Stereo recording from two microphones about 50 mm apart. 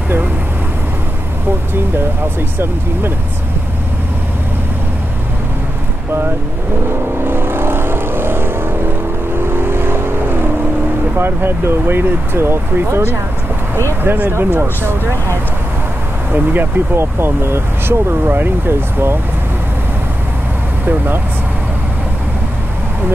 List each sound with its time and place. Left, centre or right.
6.9 s vehicle: right
11.1 s speech: right
14.0 s speech: right
16.3 s speech: right
16.9 s speech: right